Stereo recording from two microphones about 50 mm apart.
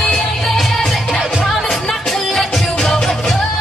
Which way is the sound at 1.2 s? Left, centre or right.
Centre.